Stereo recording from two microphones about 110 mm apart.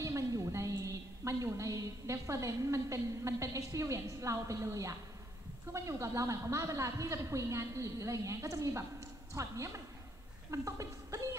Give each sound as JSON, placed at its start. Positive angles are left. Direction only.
{"t": 0.0, "sound": "a woman's voice", "side_deg": -30}